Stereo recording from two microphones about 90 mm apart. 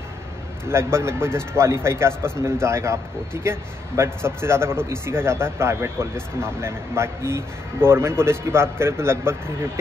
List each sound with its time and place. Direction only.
0.7 s a man's voice: 30° right (ahead or behind)